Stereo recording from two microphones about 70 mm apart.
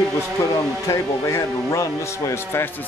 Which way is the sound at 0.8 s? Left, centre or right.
Left.